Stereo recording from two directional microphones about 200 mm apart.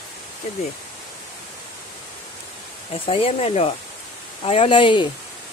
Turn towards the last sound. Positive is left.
turn(degrees=25)  # may be behind; listen again after turning